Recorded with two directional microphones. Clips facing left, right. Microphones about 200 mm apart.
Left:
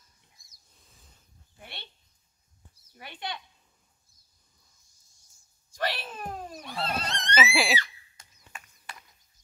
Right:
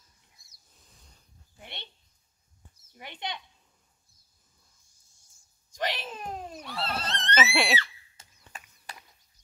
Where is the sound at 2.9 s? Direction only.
20° right (ahead or behind).